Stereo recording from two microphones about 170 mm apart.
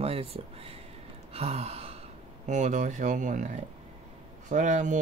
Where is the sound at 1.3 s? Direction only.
35° right (ahead or behind).